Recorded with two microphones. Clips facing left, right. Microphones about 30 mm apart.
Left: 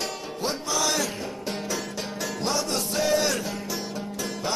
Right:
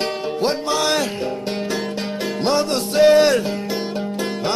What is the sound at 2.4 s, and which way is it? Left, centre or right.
Music, right.